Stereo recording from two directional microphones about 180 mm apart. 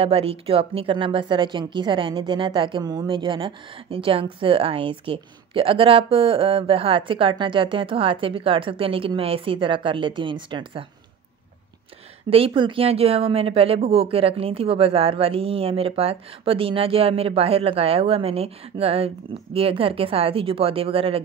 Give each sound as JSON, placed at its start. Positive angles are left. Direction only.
{"t": 0.0, "sound": "a woman's voice", "side_deg": -30}
{"t": 12.3, "sound": "speech", "side_deg": -30}